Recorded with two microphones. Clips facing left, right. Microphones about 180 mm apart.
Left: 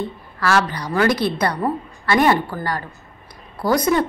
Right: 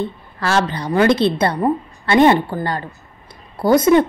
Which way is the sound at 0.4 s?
25° right (ahead or behind).